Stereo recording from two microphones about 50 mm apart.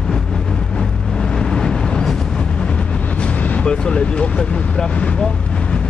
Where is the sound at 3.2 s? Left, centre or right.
Left.